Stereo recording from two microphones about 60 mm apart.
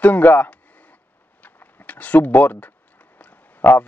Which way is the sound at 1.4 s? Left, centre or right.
Left.